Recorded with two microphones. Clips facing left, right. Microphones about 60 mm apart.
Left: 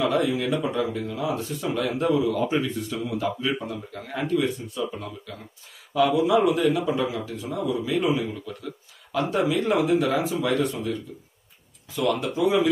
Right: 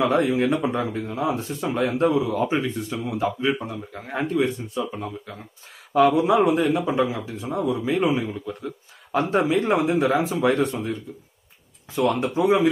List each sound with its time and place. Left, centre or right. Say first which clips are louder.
0.0 s speech: right 3 dB; right
5.9 s speech: right 3 dB; right